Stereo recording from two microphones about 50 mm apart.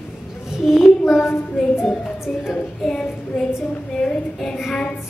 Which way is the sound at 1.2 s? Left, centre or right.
Left.